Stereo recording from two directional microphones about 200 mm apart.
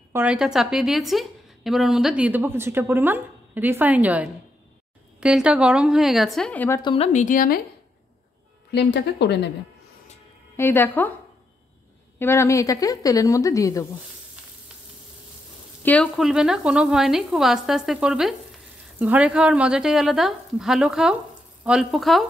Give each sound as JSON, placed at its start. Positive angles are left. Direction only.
{"t": 0.1, "sound": "a woman's voice", "side_deg": -5}
{"t": 6.8, "sound": "speech", "side_deg": 30}
{"t": 8.7, "sound": "speech", "side_deg": 60}
{"t": 10.5, "sound": "speech", "side_deg": 10}
{"t": 12.2, "sound": "a woman's voice", "side_deg": 15}
{"t": 15.8, "sound": "speech", "side_deg": 5}